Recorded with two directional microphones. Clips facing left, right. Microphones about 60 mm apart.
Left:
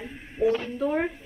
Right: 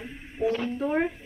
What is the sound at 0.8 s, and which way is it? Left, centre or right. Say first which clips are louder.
Speech: left 2 dB; right.